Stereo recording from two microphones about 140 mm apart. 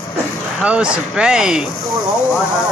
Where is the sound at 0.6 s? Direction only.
5° right (ahead or behind).